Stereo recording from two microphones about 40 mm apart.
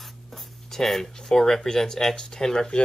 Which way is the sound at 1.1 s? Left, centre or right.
Centre.